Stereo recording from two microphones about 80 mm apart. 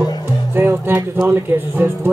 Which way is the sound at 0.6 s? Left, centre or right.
Right.